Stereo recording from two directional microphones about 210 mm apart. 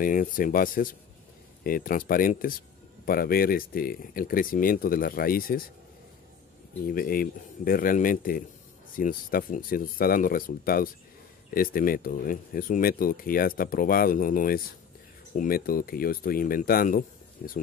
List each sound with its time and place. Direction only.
0.0 s speech: 40° left (ahead or behind)
6.9 s speech: 45° left (ahead or behind)